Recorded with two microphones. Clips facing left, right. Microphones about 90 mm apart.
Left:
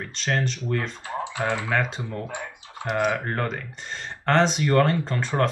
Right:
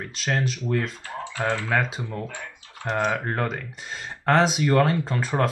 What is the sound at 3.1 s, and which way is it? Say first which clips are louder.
Speech: even; 5° right (ahead or behind).